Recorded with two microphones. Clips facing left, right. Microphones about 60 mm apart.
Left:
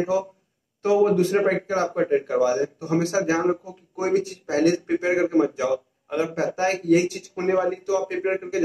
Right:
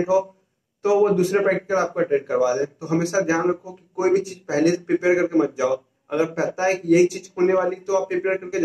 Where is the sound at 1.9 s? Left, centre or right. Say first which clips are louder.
Right 1 dB; centre.